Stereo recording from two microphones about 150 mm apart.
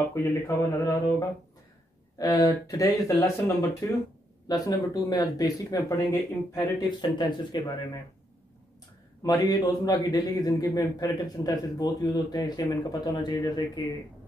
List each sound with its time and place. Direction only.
0.1 s a man's voice: 20° left (ahead or behind)
2.1 s a man's voice: 25° left (ahead or behind)
9.2 s a man's voice: 25° left (ahead or behind)